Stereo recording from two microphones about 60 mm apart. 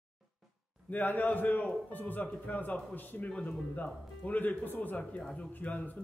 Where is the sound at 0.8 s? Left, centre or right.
Left.